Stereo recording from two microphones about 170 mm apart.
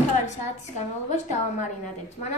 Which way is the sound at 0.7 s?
45° left (ahead or behind).